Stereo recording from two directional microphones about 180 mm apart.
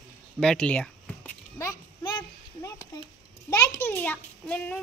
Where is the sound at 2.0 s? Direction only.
25° left (ahead or behind).